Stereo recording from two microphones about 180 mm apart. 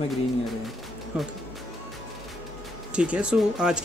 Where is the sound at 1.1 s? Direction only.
5° right (ahead or behind).